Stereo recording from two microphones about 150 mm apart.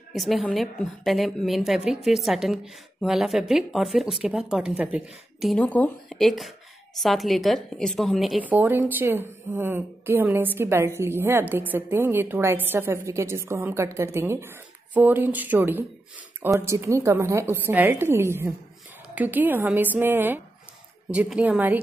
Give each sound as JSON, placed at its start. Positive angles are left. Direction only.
{"t": 0.1, "sound": "a woman's voice", "side_deg": 0}